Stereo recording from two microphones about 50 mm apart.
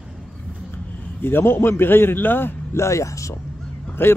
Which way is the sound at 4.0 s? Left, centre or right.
Left.